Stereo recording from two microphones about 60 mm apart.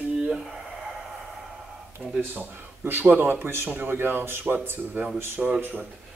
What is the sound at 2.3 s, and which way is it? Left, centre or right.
Speech, right.